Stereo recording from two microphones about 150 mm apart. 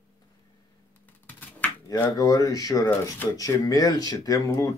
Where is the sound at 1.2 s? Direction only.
10° left (ahead or behind).